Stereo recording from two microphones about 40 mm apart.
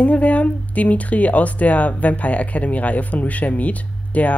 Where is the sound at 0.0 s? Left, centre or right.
Left.